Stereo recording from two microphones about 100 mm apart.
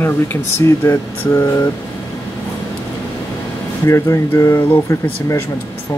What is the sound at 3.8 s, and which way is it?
Speech, 30° left (ahead or behind).